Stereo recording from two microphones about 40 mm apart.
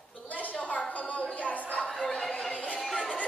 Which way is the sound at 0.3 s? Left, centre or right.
Left.